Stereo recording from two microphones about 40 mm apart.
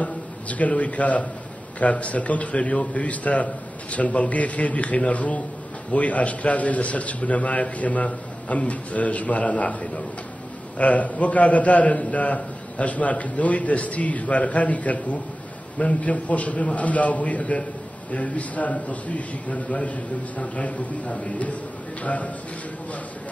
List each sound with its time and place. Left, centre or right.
0.0 s a man's voice: left